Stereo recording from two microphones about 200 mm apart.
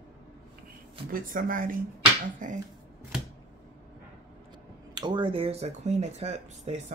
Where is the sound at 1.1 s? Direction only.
45° right (ahead or behind).